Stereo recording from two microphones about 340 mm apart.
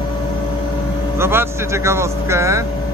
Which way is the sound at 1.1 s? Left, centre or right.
Centre.